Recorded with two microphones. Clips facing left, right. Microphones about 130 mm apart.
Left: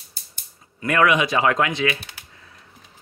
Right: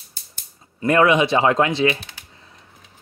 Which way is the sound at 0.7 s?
30° right (ahead or behind).